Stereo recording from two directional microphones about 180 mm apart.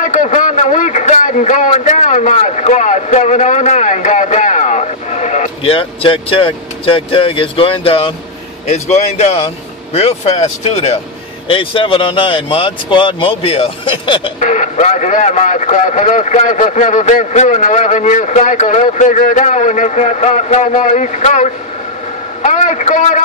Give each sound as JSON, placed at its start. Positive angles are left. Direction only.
{"t": 0.0, "sound": "a man's voice", "side_deg": 45}
{"t": 14.4, "sound": "a man's voice", "side_deg": 45}